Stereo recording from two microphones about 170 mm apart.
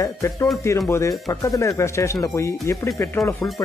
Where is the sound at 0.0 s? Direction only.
15° left (ahead or behind).